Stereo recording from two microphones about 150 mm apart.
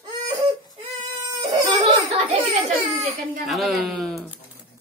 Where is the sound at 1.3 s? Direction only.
25° right (ahead or behind).